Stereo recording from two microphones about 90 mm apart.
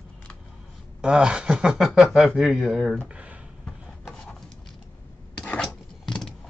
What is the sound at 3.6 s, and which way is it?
Rub, 10° left (ahead or behind).